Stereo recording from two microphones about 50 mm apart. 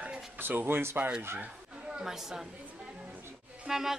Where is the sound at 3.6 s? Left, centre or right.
Centre.